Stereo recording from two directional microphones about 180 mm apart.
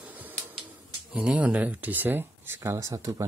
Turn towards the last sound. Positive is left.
turn(degrees=-15)  # may be behind; listen again after turning